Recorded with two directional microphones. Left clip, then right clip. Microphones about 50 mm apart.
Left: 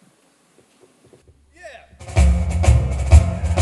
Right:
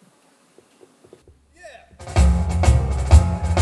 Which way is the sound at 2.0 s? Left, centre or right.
Left.